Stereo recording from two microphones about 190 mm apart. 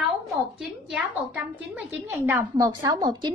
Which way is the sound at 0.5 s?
5° right (ahead or behind).